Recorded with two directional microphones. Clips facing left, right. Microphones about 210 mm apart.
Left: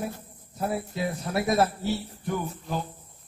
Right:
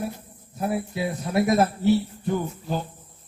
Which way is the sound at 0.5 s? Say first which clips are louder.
Right 3 dB; 10° right (ahead or behind).